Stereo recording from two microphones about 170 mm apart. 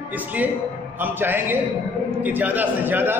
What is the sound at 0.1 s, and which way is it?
A man's voice, 10° right (ahead or behind).